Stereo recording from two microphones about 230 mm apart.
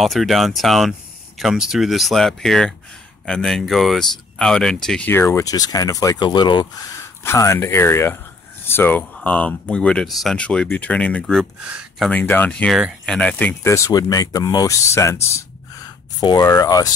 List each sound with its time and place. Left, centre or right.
0.0 s speech: centre